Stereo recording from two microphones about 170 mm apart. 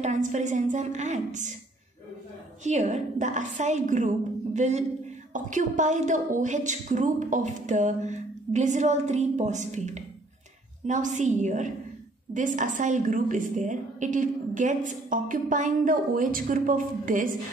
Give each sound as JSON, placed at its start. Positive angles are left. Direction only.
{"t": 0.0, "sound": "a woman's voice", "side_deg": -45}
{"t": 2.6, "sound": "a woman's voice", "side_deg": -40}